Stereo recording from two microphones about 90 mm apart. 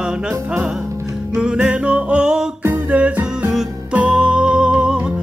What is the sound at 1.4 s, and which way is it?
Music, 10° right (ahead or behind).